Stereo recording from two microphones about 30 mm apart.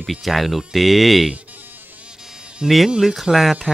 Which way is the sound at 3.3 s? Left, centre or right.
Centre.